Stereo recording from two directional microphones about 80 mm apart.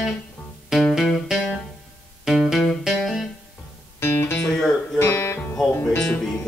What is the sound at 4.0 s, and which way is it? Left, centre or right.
Music, left.